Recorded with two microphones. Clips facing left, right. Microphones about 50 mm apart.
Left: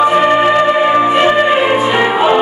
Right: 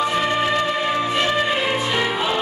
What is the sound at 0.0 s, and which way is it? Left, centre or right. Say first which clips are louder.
Music: left 10 dB; left.